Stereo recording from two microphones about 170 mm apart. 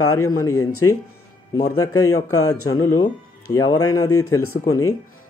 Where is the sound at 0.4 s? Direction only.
20° left (ahead or behind).